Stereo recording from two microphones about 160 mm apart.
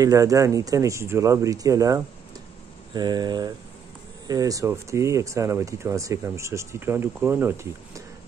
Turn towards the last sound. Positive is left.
turn(degrees=-15)  # may be behind; listen again after turning